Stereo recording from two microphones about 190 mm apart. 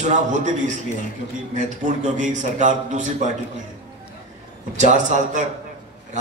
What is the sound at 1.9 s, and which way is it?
A man's voice, 40° right (ahead or behind).